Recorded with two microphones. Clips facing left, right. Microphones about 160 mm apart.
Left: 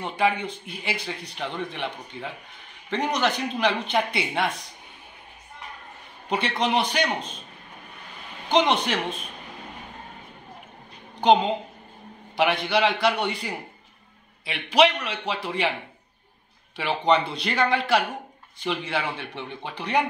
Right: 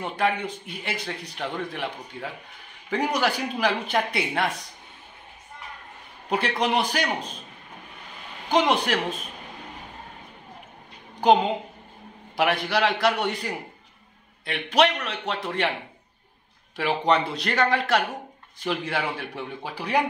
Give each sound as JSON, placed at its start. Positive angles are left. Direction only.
{"t": 0.0, "sound": "a man's voice", "side_deg": 0}
{"t": 6.2, "sound": "a man's voice", "side_deg": 0}
{"t": 8.5, "sound": "a man's voice", "side_deg": -5}
{"t": 12.4, "sound": "a man's voice", "side_deg": 0}
{"t": 16.7, "sound": "a man's voice", "side_deg": 0}